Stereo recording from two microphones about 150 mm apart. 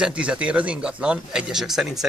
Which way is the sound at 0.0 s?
5° right (ahead or behind).